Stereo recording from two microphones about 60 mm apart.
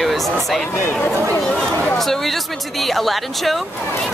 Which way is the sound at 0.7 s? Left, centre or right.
Left.